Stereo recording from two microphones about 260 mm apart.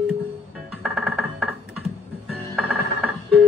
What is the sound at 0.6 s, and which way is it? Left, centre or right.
Music, centre.